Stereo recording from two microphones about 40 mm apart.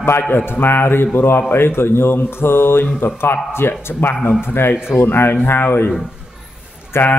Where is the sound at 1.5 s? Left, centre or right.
Left.